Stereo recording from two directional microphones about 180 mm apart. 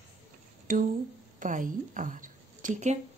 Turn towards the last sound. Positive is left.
turn(degrees=-45)  # may be behind; listen again after turning